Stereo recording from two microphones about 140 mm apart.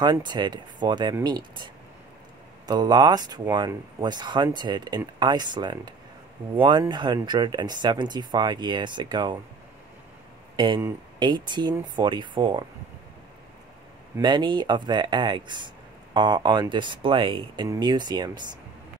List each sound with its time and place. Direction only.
0.0 s speech: 30° right (ahead or behind)
10.5 s a sound: 35° right (ahead or behind)
11.1 s speech: 35° right (ahead or behind)
14.2 s speech: 35° right (ahead or behind)